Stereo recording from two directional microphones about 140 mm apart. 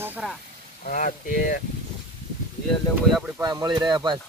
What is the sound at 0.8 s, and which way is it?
Speech, 70° left (ahead or behind).